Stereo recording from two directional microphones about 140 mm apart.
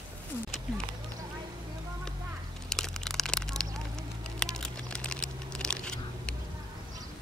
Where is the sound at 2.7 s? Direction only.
5° left (ahead or behind).